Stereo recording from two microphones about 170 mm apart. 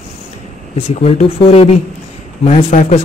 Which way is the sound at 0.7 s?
40° left (ahead or behind).